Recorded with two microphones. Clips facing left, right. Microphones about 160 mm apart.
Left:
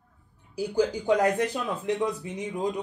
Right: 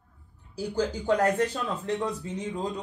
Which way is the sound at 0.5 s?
15° left (ahead or behind).